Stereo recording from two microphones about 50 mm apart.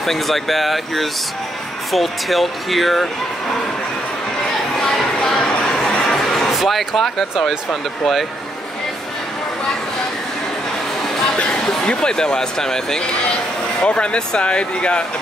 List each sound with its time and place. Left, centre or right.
0.0 s speech: centre
4.9 s a sound: centre
5.4 s chatter: left
6.0 s speech: centre
11.3 s speech: centre